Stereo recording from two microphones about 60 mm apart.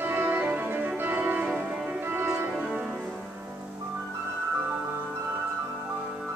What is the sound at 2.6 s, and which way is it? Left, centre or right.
Music, right.